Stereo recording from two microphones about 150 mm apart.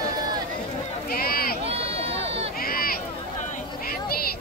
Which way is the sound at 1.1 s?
90° left.